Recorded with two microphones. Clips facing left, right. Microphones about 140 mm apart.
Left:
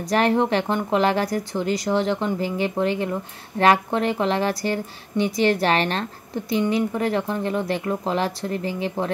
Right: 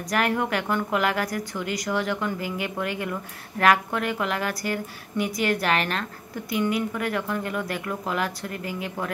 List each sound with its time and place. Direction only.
0.1 s speech: 30° left (ahead or behind)